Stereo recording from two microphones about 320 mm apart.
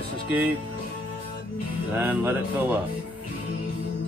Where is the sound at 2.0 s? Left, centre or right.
Centre.